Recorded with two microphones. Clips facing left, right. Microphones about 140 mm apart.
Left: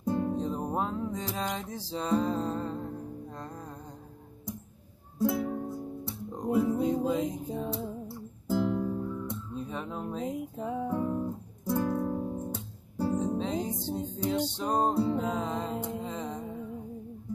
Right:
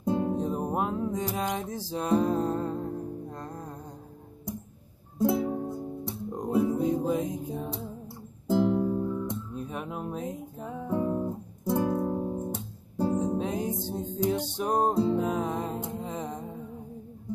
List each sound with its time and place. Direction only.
0.0 s music: 20° right (ahead or behind)
5.2 s music: 20° right (ahead or behind)
10.2 s music: 15° left (ahead or behind)
10.9 s music: 15° right (ahead or behind)